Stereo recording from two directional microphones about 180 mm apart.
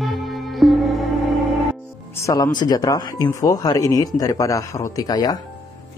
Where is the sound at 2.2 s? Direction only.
20° left (ahead or behind).